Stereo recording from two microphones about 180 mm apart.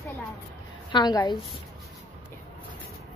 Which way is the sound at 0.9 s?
25° left (ahead or behind).